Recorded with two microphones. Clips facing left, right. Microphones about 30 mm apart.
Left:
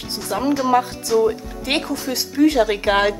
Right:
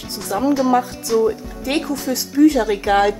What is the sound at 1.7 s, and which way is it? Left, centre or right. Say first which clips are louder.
Speech: right 1 dB; left.